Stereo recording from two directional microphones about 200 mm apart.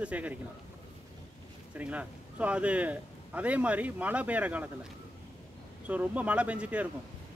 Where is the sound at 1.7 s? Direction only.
5° right (ahead or behind).